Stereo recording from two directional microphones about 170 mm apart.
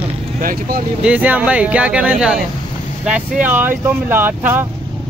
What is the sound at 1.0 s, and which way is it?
Speech, 10° right (ahead or behind).